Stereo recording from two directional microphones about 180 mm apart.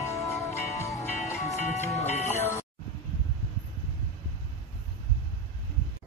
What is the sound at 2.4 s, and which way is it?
Music, 15° left (ahead or behind).